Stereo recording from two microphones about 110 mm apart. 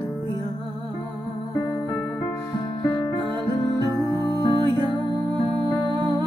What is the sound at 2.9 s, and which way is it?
Music, 40° left (ahead or behind).